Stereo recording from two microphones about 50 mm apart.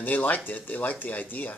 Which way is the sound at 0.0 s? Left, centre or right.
Left.